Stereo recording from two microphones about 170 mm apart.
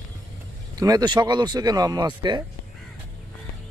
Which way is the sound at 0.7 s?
20° right (ahead or behind).